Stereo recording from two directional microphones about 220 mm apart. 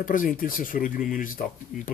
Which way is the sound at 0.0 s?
35° left (ahead or behind).